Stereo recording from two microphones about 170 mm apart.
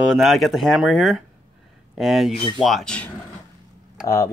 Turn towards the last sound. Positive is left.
turn(degrees=15)  # may be behind; listen again after turning